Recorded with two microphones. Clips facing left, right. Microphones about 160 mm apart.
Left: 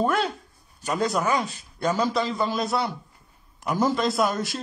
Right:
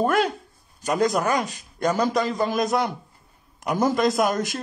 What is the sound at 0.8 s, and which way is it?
Speech, 40° right (ahead or behind).